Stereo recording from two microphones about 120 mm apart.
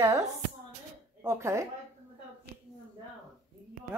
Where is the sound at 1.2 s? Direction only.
20° right (ahead or behind).